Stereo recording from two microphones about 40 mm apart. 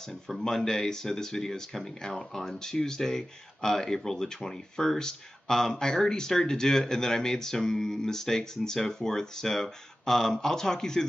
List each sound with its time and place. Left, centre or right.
0.4 s speech: centre